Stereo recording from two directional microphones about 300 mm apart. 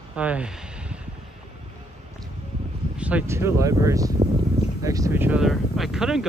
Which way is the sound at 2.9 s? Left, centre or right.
Centre.